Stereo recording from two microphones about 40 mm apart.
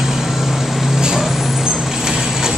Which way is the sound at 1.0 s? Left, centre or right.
Centre.